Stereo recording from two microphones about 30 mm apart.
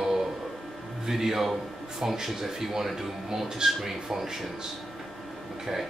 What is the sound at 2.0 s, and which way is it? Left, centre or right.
Speech, right.